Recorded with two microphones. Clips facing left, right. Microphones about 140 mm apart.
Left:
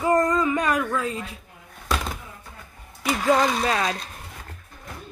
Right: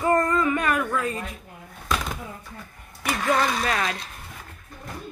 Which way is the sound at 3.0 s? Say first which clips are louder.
Left 3 dB; 20° left (ahead or behind).